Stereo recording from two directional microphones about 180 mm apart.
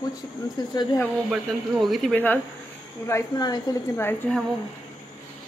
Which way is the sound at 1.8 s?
Centre (ahead or behind).